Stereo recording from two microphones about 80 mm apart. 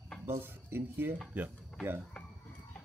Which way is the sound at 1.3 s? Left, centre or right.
Centre.